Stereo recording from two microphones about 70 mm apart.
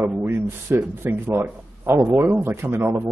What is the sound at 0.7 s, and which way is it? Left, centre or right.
A man's voice, right.